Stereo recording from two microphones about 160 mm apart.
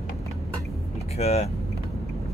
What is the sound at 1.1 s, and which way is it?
Speech, 40° left (ahead or behind).